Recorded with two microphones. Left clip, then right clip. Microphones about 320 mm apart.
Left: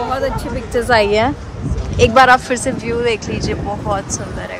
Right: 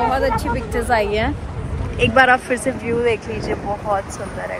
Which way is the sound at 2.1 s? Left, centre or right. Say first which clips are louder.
Left 3 dB; centre.